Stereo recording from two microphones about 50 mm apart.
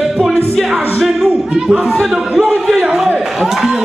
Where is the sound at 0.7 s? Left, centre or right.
Right.